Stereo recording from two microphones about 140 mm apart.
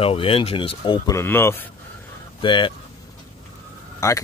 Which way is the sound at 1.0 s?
15° left (ahead or behind).